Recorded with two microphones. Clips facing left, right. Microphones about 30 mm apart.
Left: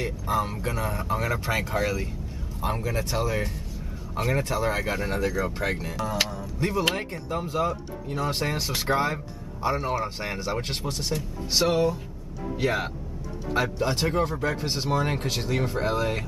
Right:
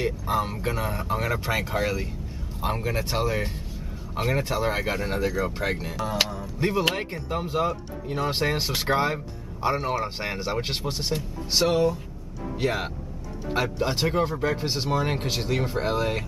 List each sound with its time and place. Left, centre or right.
0.0 s speech: centre
2.8 s speech: right
4.2 s speech: centre
11.5 s speech: centre
13.5 s speech: centre